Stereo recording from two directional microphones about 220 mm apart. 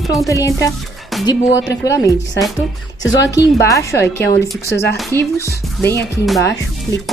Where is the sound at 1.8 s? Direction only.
15° left (ahead or behind).